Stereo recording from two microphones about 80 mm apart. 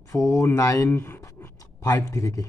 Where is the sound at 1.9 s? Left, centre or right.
Left.